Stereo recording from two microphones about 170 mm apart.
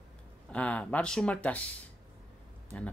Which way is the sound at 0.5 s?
5° left (ahead or behind).